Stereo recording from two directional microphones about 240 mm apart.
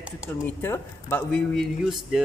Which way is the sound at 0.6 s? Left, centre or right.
Centre.